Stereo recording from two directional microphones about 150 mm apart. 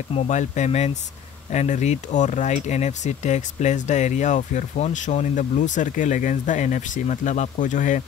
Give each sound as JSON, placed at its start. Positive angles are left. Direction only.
{"t": 0.1, "sound": "speech", "side_deg": 55}